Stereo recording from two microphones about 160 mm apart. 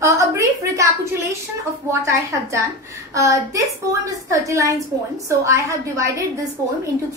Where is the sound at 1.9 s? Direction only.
15° right (ahead or behind).